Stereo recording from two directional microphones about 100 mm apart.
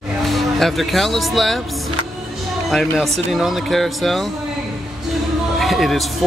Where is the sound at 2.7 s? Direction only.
5° left (ahead or behind).